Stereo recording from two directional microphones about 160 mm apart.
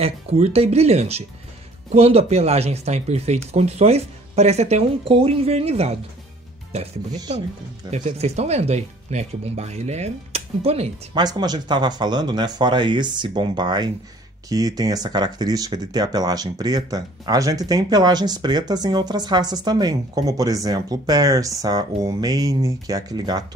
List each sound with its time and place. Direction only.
0.0 s speech: 40° right (ahead or behind)
11.1 s speech: 25° right (ahead or behind)